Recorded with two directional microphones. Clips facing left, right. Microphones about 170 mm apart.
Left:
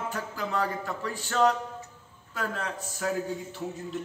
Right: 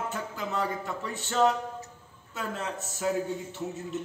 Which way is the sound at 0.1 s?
25° right (ahead or behind).